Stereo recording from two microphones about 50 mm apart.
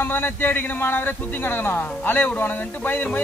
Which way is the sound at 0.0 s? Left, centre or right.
Left.